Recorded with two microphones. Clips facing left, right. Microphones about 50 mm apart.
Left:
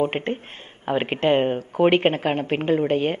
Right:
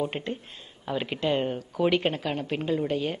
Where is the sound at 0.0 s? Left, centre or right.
Left.